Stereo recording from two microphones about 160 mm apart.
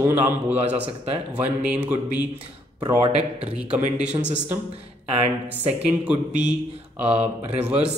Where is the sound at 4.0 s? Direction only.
10° right (ahead or behind).